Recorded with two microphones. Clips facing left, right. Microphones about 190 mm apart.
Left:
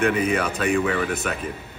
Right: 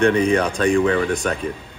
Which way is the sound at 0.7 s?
30° right (ahead or behind).